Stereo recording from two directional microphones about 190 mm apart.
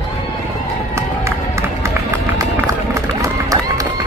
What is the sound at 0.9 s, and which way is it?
Run, 15° right (ahead or behind).